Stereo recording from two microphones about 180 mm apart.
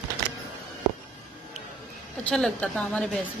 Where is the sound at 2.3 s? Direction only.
5° left (ahead or behind).